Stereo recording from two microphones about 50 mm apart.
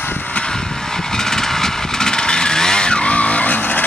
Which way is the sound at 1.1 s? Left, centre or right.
Centre.